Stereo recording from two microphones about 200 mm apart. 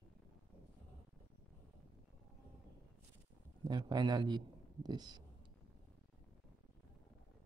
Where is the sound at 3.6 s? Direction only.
20° right (ahead or behind).